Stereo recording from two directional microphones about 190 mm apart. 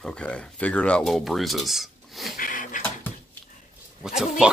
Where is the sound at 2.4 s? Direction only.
45° left (ahead or behind).